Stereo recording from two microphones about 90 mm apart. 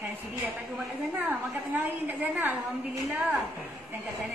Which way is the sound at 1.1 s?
20° right (ahead or behind).